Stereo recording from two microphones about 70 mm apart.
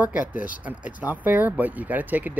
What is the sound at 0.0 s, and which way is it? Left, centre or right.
Speech, centre.